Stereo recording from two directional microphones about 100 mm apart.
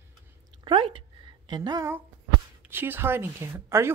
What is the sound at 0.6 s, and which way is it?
Speech, 60° right (ahead or behind).